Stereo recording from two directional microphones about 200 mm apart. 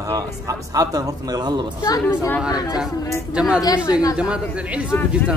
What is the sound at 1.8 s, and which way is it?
Speech, 15° left (ahead or behind).